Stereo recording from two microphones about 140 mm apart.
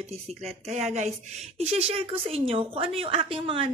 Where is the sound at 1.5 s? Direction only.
50° right (ahead or behind).